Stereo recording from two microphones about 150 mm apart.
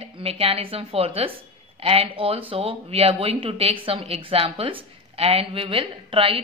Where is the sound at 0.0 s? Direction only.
40° right (ahead or behind).